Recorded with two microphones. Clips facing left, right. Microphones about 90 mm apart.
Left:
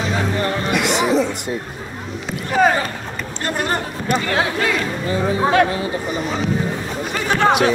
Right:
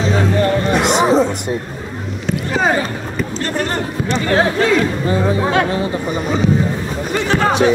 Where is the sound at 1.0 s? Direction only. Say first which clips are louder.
Right 4 dB; 35° right (ahead or behind).